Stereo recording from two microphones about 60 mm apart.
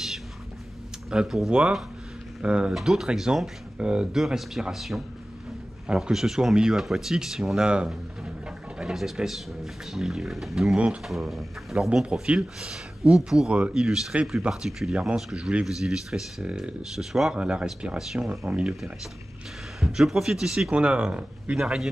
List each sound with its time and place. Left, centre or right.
1.1 s speech: centre
12.0 s speech: centre
13.5 s speech: centre
14.5 s speech: centre
16.4 s speech: centre
16.9 s speech: centre
17.4 s speech: centre
18.4 s speech: centre
19.8 s speech: centre
20.7 s speech: centre
21.5 s speech: centre